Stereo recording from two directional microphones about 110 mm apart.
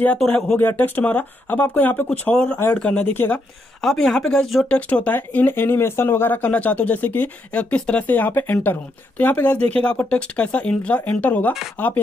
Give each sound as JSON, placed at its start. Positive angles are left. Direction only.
{"t": 0.2, "sound": "speech", "side_deg": 5}
{"t": 0.6, "sound": "speech", "side_deg": 15}
{"t": 3.8, "sound": "speech", "side_deg": 5}